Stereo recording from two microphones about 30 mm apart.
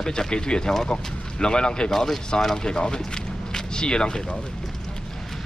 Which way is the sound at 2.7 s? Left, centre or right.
Left.